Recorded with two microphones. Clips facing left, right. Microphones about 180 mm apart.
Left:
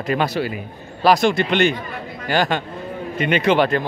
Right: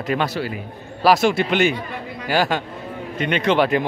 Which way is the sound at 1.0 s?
5° right (ahead or behind).